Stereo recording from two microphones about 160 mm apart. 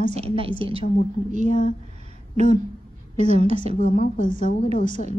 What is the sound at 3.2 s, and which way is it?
Speech, 40° right (ahead or behind).